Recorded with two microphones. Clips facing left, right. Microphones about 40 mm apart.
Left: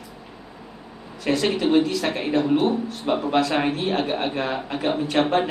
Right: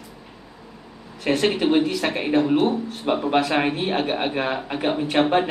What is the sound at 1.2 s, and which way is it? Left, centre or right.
Speech, right.